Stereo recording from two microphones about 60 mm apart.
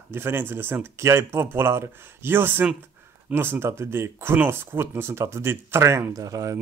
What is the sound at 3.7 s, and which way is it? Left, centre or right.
Speech, right.